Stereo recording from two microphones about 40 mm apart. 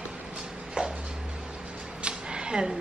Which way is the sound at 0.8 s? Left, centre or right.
Right.